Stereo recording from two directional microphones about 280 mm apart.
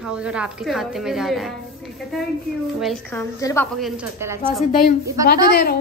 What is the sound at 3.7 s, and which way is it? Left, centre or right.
Speech, centre.